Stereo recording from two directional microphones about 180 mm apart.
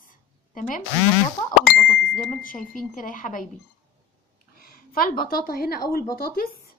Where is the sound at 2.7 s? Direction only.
50° left (ahead or behind).